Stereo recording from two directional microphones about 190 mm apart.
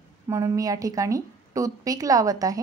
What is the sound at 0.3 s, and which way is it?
Speech, 15° right (ahead or behind).